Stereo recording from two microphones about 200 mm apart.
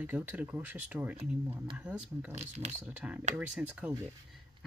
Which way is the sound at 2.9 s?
5° right (ahead or behind).